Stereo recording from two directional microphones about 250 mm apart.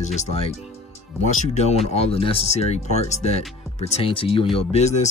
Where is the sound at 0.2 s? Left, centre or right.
Left.